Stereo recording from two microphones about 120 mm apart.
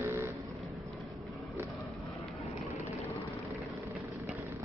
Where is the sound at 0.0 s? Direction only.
25° right (ahead or behind).